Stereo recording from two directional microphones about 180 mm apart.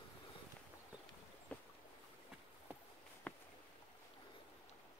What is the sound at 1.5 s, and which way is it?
Boat, 10° left (ahead or behind).